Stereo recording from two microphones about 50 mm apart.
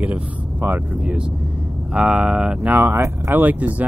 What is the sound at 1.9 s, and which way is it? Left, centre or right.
Speech, right.